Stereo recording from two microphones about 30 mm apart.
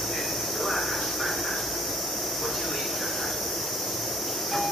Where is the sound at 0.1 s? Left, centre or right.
Centre.